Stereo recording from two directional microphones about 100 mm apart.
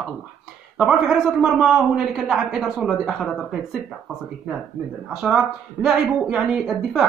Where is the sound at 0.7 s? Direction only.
5° right (ahead or behind).